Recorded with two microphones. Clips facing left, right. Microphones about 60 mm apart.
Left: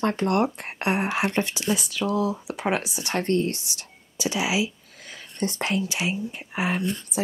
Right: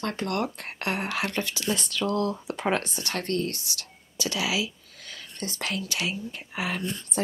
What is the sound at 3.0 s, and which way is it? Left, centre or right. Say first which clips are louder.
Speech: left 5 dB; left.